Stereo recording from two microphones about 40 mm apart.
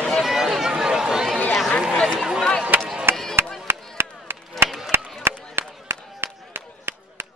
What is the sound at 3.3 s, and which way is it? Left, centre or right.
Chop, right.